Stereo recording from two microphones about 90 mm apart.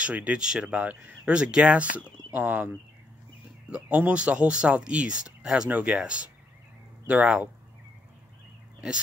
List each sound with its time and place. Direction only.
0.0 s speech: 15° right (ahead or behind)